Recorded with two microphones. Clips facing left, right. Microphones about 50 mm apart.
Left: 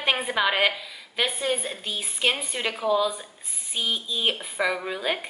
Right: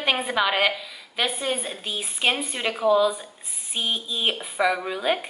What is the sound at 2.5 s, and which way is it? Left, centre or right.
A woman's voice, centre.